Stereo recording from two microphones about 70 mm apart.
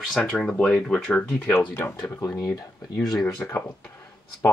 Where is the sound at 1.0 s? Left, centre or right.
Centre.